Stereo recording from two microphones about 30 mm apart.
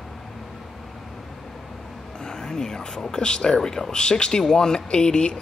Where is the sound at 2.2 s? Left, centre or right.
Centre.